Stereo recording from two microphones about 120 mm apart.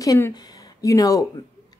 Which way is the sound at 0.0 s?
30° left (ahead or behind).